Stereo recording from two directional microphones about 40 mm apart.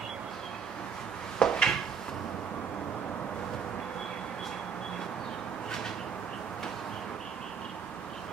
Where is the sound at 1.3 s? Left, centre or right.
Centre.